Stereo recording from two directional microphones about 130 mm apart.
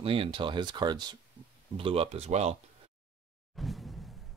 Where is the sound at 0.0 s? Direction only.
45° right (ahead or behind).